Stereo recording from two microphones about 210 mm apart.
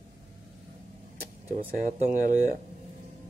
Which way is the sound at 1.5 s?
30° right (ahead or behind).